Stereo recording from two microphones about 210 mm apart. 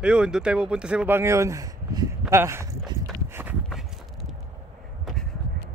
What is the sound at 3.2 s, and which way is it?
Walk, 10° right (ahead or behind).